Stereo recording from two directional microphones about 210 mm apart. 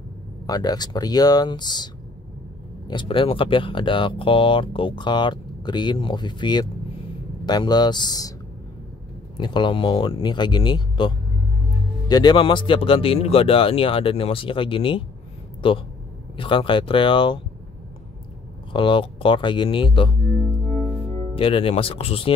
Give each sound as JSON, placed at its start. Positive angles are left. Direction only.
{"t": 0.5, "sound": "speech", "side_deg": 20}
{"t": 2.9, "sound": "speech", "side_deg": 25}
{"t": 9.4, "sound": "speech", "side_deg": 20}
{"t": 18.7, "sound": "speech", "side_deg": 25}
{"t": 21.4, "sound": "speech", "side_deg": 25}